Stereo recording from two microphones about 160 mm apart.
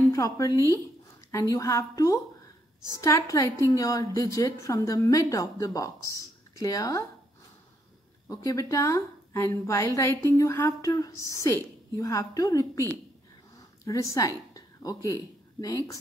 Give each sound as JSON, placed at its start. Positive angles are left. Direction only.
{"t": 0.1, "sound": "a woman's voice", "side_deg": 20}
{"t": 8.3, "sound": "a woman's voice", "side_deg": 20}
{"t": 13.8, "sound": "a woman's voice", "side_deg": 20}